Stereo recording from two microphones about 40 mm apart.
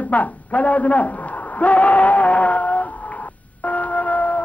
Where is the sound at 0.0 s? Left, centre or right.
Left.